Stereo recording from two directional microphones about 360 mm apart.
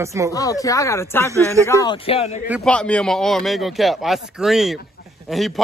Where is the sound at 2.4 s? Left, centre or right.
Centre.